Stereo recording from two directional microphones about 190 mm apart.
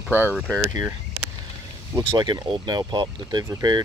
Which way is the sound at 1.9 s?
20° right (ahead or behind).